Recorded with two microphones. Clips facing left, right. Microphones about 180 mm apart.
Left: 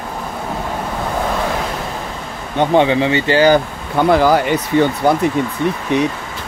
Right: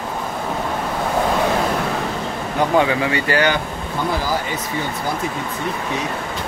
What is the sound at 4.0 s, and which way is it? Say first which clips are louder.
Speech: left 10 dB; 65° left (ahead or behind).